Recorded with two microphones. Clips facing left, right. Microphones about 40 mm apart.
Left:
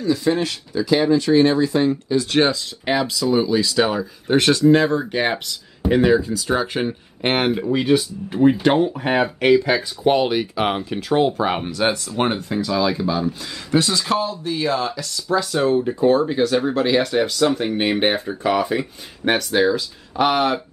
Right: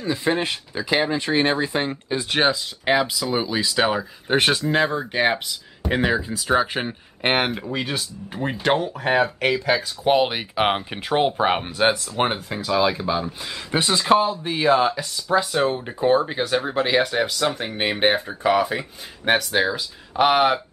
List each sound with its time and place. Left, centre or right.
0.0 s speech: right
2.3 s speech: centre
4.6 s speech: centre
7.5 s speech: centre
10.1 s speech: centre